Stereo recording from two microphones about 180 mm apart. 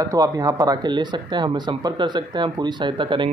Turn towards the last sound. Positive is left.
turn(degrees=-25)  # may be behind; listen again after turning